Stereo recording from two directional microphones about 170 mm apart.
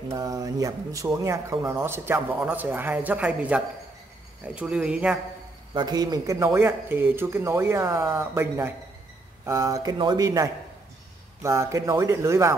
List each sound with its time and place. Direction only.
0.1 s speech: 20° right (ahead or behind)
5.8 s speech: 25° right (ahead or behind)